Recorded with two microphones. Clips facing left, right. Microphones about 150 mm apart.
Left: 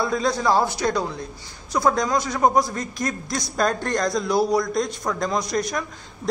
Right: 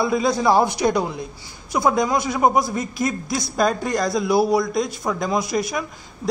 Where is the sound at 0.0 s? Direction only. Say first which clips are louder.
Right 3 dB; 10° right (ahead or behind).